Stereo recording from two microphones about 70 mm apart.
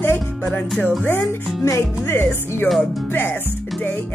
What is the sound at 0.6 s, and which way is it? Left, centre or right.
Speech, centre.